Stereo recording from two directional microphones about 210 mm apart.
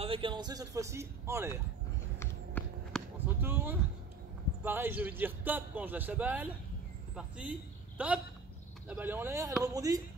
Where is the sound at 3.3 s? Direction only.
10° right (ahead or behind).